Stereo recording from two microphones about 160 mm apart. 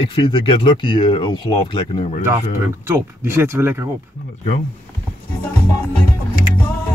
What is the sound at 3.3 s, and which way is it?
Speech, 15° right (ahead or behind).